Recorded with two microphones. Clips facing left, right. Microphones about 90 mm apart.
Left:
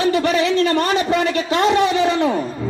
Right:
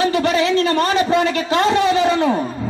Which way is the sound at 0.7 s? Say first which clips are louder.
Right 1 dB; 35° right (ahead or behind).